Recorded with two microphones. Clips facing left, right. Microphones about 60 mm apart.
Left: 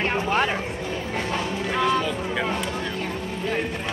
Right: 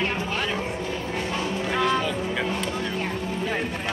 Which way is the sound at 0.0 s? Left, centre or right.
Left.